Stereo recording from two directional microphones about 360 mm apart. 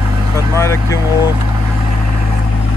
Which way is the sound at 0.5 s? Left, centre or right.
Centre.